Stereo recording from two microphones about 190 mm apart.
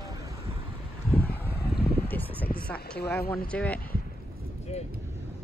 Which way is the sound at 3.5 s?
5° left (ahead or behind).